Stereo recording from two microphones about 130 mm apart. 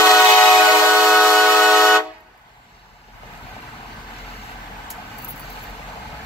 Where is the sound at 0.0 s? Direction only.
20° left (ahead or behind).